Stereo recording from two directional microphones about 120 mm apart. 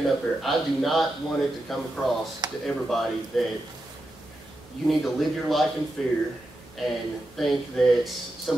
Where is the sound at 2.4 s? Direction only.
35° right (ahead or behind).